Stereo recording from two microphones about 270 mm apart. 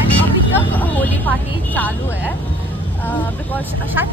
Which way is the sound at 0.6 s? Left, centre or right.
Centre.